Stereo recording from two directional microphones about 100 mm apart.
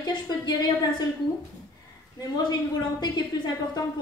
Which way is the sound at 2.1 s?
40° left (ahead or behind).